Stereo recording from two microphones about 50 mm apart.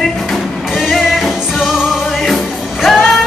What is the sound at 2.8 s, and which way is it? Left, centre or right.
Music, centre.